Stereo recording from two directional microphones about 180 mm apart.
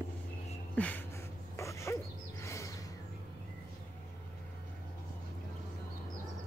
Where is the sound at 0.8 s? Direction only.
10° left (ahead or behind).